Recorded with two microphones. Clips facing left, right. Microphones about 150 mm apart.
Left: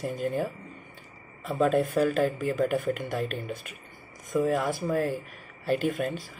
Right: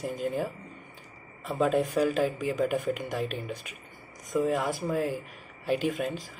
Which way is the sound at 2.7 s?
5° right (ahead or behind).